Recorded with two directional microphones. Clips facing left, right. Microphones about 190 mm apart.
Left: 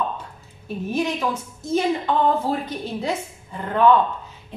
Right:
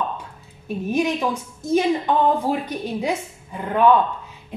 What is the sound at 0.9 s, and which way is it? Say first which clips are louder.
A woman's voice: right 2 dB; 15° right (ahead or behind).